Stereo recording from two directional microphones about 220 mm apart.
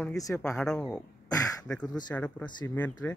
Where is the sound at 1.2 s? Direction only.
15° left (ahead or behind).